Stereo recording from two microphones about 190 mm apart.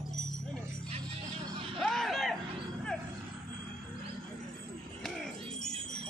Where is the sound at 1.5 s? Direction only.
30° right (ahead or behind).